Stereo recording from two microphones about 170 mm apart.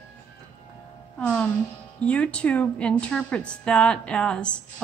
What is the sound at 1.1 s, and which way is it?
A woman's voice, 10° left (ahead or behind).